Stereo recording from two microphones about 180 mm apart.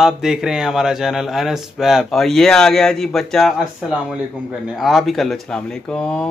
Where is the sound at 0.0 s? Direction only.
5° right (ahead or behind).